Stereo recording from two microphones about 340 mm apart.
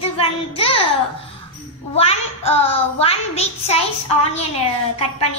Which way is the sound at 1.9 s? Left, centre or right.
Centre.